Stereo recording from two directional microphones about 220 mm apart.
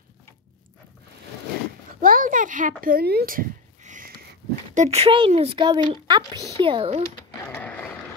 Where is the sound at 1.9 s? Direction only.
40° right (ahead or behind).